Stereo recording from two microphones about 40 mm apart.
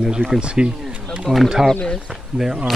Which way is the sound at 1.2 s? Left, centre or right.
Centre.